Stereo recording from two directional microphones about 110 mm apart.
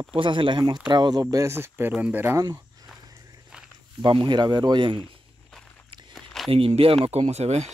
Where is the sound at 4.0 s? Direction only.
45° right (ahead or behind).